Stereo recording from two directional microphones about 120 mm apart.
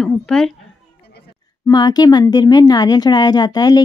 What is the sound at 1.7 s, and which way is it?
A woman's voice, 35° left (ahead or behind).